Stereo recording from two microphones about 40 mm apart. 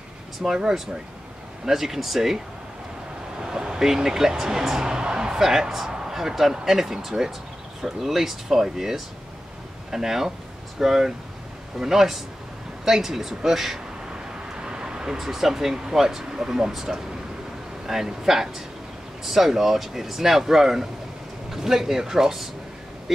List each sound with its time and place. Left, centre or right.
0.4 s speech: centre
5.4 s speech: centre
14.6 s vehicle: centre
15.1 s speech: centre